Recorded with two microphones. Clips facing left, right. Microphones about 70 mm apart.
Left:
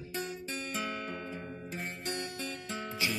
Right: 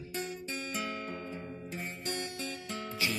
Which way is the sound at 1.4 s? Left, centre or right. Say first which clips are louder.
Even; centre.